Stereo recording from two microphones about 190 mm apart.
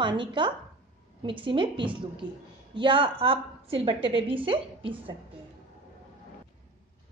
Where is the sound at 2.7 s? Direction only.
25° right (ahead or behind).